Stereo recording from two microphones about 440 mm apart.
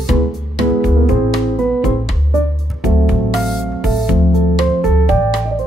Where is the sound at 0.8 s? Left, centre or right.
Centre.